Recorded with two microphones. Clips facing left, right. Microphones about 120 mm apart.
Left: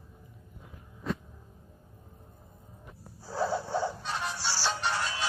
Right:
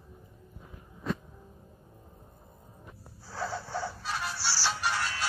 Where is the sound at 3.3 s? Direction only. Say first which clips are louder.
Left 5 dB; 20° left (ahead or behind).